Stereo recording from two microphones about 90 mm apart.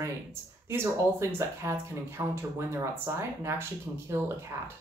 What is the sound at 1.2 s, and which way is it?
Speech, 30° right (ahead or behind).